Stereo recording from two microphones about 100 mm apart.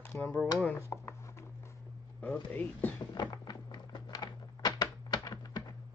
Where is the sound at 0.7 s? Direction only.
25° left (ahead or behind).